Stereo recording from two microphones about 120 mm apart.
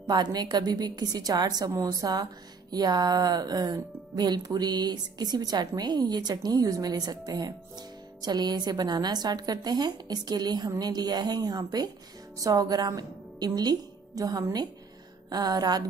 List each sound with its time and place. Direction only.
0.0 s speech: 35° right (ahead or behind)